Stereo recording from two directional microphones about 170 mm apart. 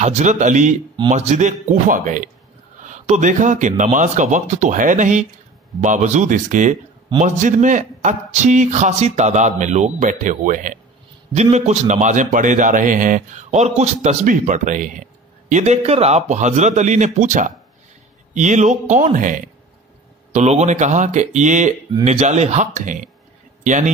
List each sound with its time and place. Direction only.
0.0 s a man's voice: 45° right (ahead or behind)